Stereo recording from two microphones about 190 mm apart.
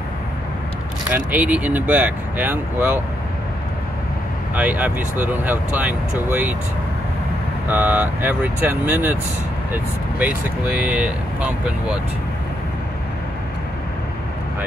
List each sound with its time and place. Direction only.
1.1 s speech: 10° right (ahead or behind)
4.6 s speech: 10° right (ahead or behind)
7.6 s speech: 10° right (ahead or behind)